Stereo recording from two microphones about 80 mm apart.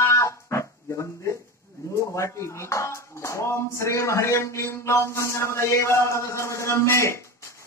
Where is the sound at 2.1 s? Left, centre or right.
Left.